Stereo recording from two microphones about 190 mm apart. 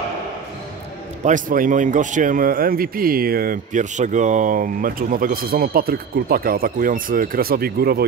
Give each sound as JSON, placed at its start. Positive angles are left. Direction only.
{"t": 1.2, "sound": "speech", "side_deg": -45}